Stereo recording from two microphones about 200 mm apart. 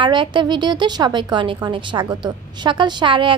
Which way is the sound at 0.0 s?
25° right (ahead or behind).